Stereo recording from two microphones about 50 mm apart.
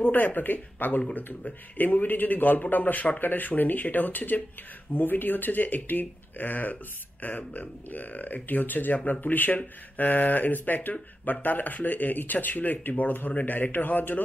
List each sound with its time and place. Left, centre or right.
0.0 s speech: left